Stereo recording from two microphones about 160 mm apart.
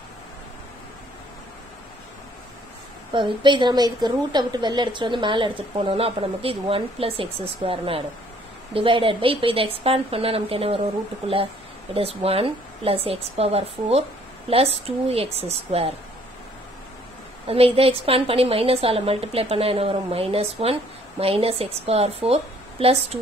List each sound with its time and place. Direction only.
3.1 s a woman's voice: 30° right (ahead or behind)
11.9 s a woman's voice: 35° right (ahead or behind)
17.5 s a woman's voice: 35° right (ahead or behind)